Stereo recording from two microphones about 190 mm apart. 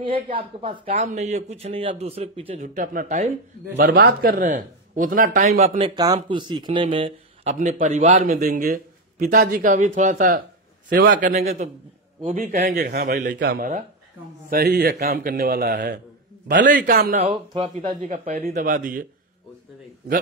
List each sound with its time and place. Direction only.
0.0 s a man's voice: 25° right (ahead or behind); by 5.7 s 45° right (ahead or behind)
5.8 s a man's voice: 25° right (ahead or behind)
7.5 s a man's voice: 40° right (ahead or behind)
12.7 s a man's voice: 60° right (ahead or behind)
17.2 s a man's voice: 30° right (ahead or behind)
18.0 s a man's voice: 40° right (ahead or behind)